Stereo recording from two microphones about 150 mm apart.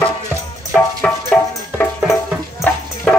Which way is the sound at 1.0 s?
5° left (ahead or behind).